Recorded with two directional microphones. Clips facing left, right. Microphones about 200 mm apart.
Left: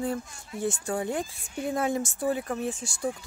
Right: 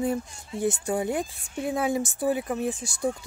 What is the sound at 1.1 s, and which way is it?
Speech, centre (ahead or behind).